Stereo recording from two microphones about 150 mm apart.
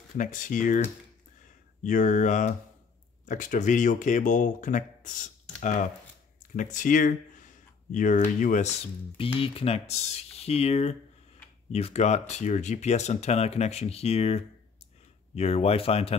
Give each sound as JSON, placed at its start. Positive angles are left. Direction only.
{"t": 0.2, "sound": "speech", "side_deg": 60}
{"t": 9.1, "sound": "speech", "side_deg": 35}